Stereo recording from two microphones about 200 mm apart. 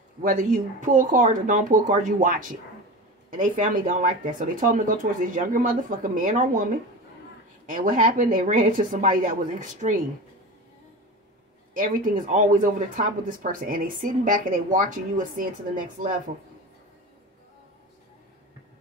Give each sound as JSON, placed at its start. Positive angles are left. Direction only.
{"t": 0.2, "sound": "speech", "side_deg": -40}
{"t": 7.7, "sound": "speech", "side_deg": -40}
{"t": 11.7, "sound": "speech", "side_deg": -40}